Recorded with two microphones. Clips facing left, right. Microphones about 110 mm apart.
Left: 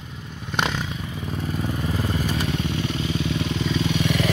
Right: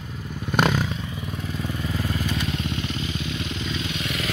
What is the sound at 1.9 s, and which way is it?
Vehicle, 35° left (ahead or behind).